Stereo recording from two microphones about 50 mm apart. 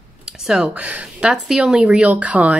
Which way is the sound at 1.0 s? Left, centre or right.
Centre.